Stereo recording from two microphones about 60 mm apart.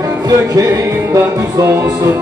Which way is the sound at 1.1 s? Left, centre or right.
Right.